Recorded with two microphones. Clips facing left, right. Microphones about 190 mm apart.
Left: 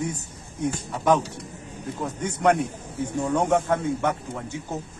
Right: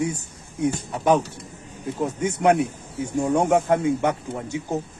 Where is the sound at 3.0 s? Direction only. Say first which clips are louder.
Right 3 dB; 10° right (ahead or behind).